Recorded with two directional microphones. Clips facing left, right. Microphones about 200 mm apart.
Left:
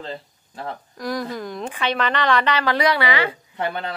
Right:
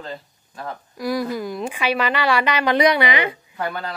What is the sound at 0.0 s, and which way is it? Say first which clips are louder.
Speech: left 1 dB; 25° left (ahead or behind).